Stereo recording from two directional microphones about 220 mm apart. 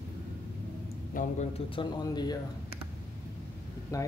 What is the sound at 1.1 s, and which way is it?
Speech, 30° left (ahead or behind).